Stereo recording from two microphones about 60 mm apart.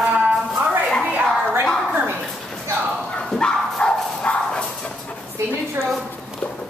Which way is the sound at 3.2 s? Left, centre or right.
Centre.